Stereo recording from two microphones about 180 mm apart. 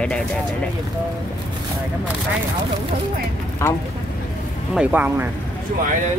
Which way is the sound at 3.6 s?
15° left (ahead or behind).